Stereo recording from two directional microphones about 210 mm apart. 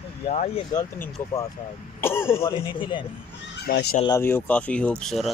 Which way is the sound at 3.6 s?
45° left (ahead or behind).